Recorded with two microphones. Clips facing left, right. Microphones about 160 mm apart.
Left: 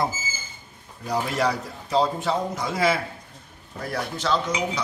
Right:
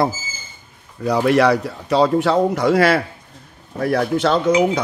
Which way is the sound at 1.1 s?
70° right (ahead or behind).